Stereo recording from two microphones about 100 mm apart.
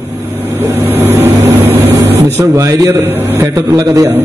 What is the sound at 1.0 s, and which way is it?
Vehicle, 25° right (ahead or behind).